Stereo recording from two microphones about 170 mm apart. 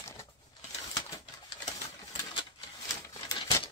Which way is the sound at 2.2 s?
25° left (ahead or behind).